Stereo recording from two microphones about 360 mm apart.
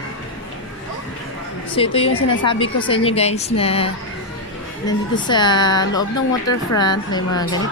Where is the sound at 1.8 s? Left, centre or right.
Centre.